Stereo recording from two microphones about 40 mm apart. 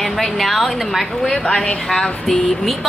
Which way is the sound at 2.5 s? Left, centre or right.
Centre.